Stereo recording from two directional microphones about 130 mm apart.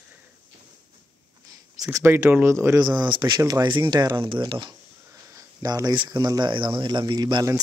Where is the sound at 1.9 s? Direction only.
20° right (ahead or behind).